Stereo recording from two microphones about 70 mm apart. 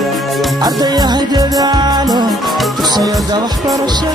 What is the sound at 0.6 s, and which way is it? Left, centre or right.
Music, right.